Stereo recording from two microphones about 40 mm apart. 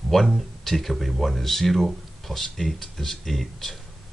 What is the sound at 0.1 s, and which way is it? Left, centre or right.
Speech, centre.